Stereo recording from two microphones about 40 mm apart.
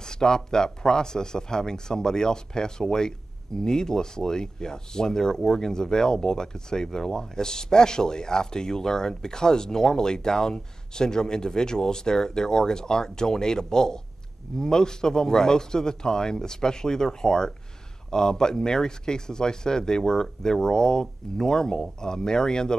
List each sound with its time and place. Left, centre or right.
0.0 s speech: centre